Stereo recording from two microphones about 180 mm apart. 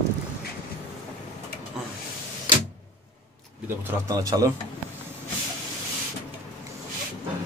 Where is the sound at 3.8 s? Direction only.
20° right (ahead or behind).